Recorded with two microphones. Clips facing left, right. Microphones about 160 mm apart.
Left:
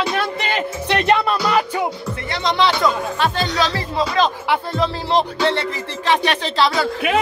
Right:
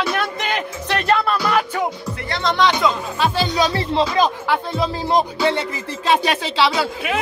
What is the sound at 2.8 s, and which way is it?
A man's voice, 5° right (ahead or behind).